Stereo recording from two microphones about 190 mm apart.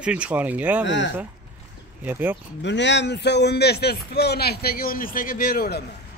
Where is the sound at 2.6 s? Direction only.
65° left (ahead or behind).